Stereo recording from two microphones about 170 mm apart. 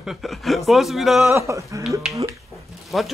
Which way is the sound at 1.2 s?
15° right (ahead or behind).